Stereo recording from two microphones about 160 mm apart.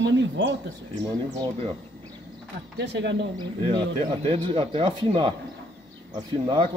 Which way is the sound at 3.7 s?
35° right (ahead or behind).